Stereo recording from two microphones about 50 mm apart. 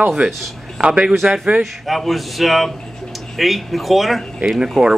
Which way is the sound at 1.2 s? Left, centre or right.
Centre.